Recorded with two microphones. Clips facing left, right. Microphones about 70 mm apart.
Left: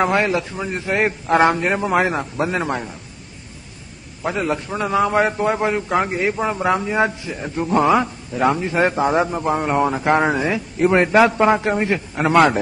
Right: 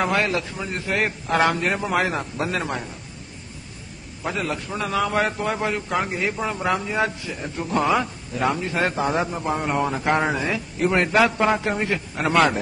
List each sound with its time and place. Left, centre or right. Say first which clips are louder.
0.0 s a man's voice: left 4 dB; left
4.2 s a man's voice: left 5 dB; centre